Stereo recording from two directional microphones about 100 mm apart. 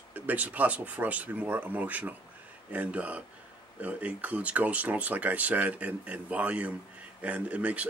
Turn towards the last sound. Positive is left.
turn(degrees=-15)  # may be behind; listen again after turning